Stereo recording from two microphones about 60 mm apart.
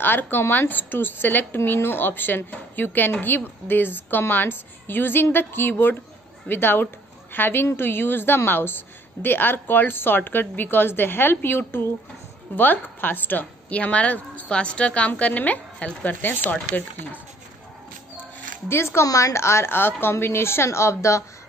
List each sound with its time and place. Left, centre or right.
0.0 s a woman's voice: left
18.7 s a woman's voice: left
19.0 s a woman's voice: left